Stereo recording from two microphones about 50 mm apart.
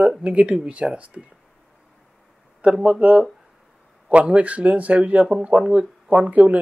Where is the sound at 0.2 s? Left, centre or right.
Right.